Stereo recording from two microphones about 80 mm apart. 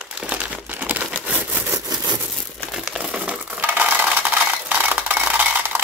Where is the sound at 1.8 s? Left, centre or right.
Right.